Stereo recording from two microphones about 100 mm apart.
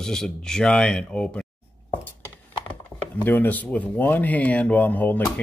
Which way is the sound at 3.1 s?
20° left (ahead or behind).